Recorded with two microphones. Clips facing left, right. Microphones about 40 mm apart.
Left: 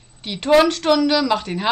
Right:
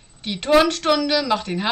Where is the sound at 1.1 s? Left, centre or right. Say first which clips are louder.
Left 2 dB; centre.